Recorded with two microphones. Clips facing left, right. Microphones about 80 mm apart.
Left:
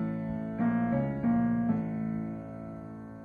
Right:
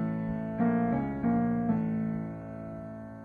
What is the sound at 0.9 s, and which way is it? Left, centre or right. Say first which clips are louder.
Music: even; centre.